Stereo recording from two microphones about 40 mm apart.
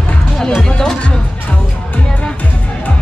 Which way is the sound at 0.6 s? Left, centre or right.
Centre.